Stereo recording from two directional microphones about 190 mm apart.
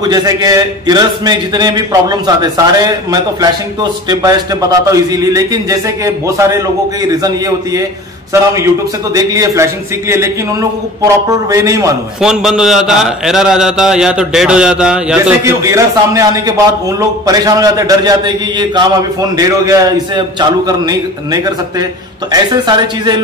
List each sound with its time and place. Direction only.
0.0 s a man's voice: 20° right (ahead or behind)
9.1 s a man's voice: 15° right (ahead or behind)
12.2 s a man's voice: 5° right (ahead or behind)
15.4 s a man's voice: 15° right (ahead or behind)